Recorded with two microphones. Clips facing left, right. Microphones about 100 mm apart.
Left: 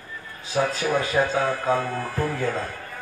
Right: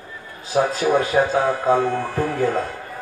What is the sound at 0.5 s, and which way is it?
Speech, 25° right (ahead or behind).